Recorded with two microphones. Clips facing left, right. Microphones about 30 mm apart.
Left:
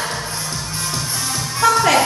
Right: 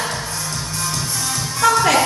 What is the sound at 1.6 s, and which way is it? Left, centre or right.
Speech, centre.